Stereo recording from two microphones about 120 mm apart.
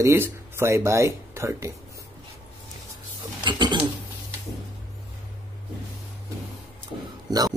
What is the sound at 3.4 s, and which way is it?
Speech, 40° right (ahead or behind).